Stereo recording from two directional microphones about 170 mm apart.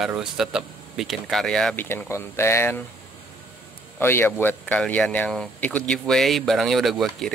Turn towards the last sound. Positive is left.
turn(degrees=0)  # may be behind; listen again after turning